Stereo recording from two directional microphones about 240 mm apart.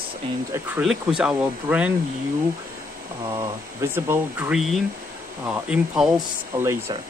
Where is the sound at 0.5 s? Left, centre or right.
Centre.